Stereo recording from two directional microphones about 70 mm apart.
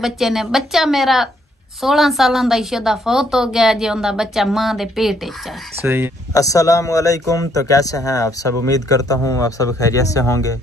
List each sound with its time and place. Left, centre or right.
0.0 s a woman's voice: centre
5.8 s speech: right
6.3 s a man's voice: left